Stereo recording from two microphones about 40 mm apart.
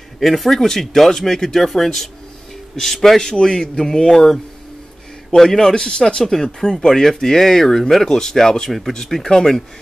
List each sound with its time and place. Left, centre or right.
0.2 s a man's voice: centre
3.2 s a man's voice: centre